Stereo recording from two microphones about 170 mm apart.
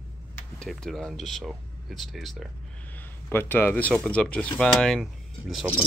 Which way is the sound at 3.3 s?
10° left (ahead or behind).